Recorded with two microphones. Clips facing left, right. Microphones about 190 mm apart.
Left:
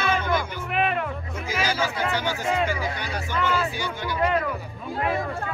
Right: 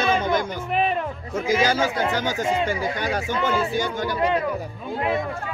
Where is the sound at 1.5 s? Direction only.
50° right (ahead or behind).